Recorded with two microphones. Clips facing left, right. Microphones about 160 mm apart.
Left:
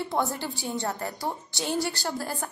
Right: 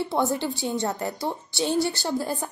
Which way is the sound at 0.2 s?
20° right (ahead or behind).